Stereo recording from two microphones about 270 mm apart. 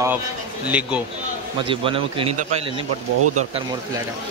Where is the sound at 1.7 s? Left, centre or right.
Centre.